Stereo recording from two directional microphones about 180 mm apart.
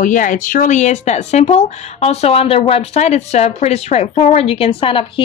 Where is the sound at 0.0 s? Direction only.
45° left (ahead or behind).